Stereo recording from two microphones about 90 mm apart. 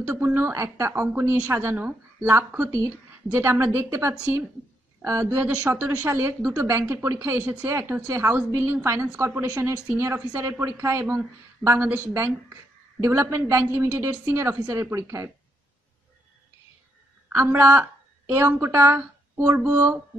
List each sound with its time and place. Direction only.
0.1 s a woman's voice: 20° right (ahead or behind)
17.3 s a woman's voice: 25° right (ahead or behind)